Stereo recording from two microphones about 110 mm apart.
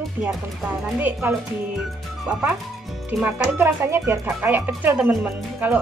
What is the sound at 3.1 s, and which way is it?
Speech, 15° right (ahead or behind).